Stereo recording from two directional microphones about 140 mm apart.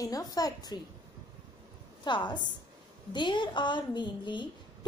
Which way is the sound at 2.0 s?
35° left (ahead or behind).